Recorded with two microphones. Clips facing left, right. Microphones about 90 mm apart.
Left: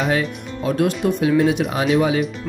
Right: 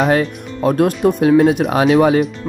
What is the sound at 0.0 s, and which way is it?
Speech, 45° right (ahead or behind).